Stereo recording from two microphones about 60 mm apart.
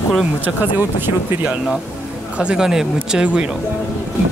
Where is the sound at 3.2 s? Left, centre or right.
Centre.